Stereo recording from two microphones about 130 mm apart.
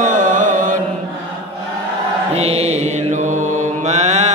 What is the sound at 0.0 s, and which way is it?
Mantra, 75° right (ahead or behind).